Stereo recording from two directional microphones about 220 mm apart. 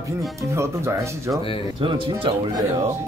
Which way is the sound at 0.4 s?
15° right (ahead or behind).